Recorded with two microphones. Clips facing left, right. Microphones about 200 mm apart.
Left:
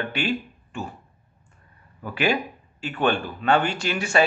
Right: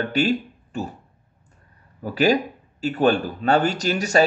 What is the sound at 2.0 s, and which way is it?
Speech, 40° right (ahead or behind).